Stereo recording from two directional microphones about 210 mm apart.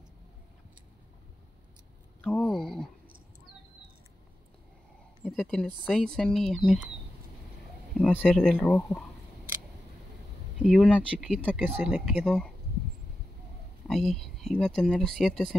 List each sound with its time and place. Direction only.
2.2 s speech: centre (ahead or behind)
5.2 s a woman's voice: centre (ahead or behind)
8.0 s speech: 5° left (ahead or behind)
10.6 s speech: centre (ahead or behind)
13.8 s speech: centre (ahead or behind)